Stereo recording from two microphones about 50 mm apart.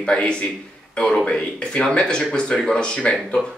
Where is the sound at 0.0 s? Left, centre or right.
Centre.